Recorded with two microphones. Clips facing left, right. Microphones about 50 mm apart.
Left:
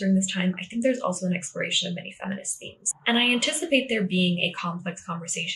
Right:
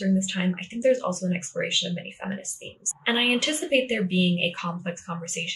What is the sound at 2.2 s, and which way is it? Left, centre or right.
Speech, centre.